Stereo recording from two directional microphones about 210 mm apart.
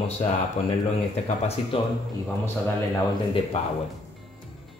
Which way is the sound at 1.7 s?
25° left (ahead or behind).